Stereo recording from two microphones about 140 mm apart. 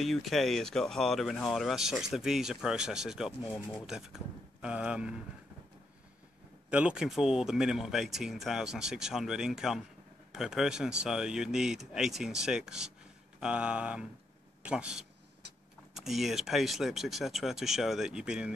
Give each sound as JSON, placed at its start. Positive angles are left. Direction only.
{"t": 0.0, "sound": "speech", "side_deg": 0}
{"t": 6.7, "sound": "speech", "side_deg": -5}